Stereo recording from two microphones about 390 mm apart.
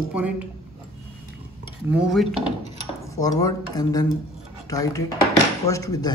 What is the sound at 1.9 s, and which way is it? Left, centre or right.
Speech, centre.